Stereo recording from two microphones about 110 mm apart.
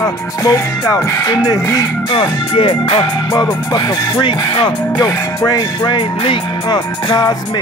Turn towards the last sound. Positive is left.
turn(degrees=40)  # may be behind; listen again after turning